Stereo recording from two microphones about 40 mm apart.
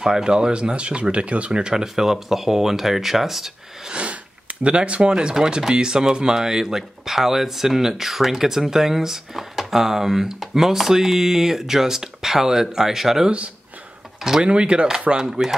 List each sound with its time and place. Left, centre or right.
0.0 s speech: centre
3.9 s gasp: right
5.1 s speech: centre
14.4 s speech: right